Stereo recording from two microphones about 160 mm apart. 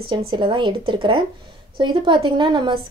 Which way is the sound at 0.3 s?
30° right (ahead or behind).